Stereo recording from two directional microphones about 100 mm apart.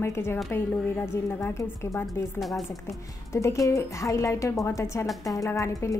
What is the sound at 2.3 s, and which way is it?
Speech, centre (ahead or behind).